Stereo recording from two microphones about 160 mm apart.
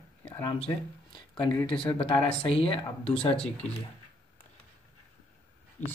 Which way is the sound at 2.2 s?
35° left (ahead or behind).